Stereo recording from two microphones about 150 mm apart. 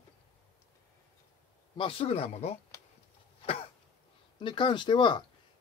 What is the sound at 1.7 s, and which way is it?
Speech, 35° left (ahead or behind).